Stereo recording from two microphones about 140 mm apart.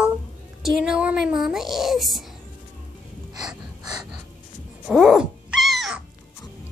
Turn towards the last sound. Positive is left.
turn(degrees=0)  # may be behind; listen again after turning